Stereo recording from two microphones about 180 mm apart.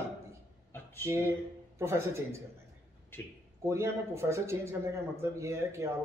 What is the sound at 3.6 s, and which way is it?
A man's voice, 15° right (ahead or behind).